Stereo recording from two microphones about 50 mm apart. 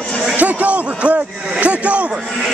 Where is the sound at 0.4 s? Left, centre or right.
Right.